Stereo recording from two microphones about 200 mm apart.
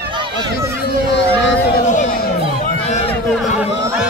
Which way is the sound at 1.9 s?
40° left (ahead or behind).